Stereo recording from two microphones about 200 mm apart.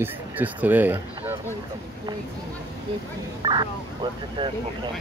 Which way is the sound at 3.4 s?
20° right (ahead or behind).